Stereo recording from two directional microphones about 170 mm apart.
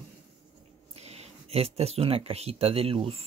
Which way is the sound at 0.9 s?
35° right (ahead or behind).